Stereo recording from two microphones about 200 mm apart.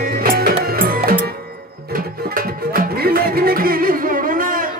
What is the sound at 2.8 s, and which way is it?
Music, 50° right (ahead or behind).